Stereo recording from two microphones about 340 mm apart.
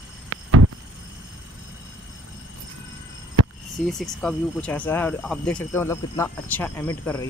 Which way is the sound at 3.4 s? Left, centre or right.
Right.